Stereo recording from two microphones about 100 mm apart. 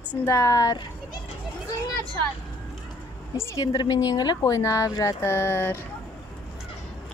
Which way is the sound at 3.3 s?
25° left (ahead or behind).